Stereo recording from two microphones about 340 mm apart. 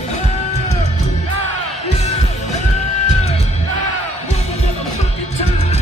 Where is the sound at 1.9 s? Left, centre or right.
Centre.